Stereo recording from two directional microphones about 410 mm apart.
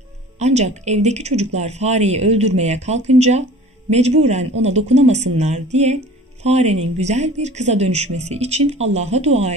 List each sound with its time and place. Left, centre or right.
0.4 s speech: centre